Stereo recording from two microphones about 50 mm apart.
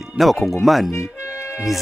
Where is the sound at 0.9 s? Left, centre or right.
Left.